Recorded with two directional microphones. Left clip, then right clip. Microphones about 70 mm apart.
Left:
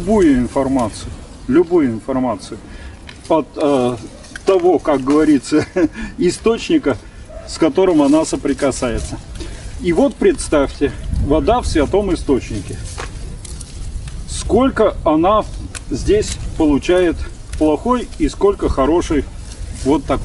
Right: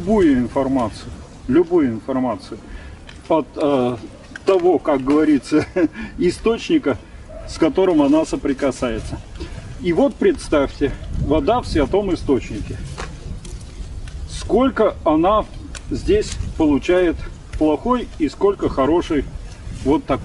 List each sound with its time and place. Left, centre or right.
0.1 s speech: centre
4.5 s speech: centre
14.3 s speech: centre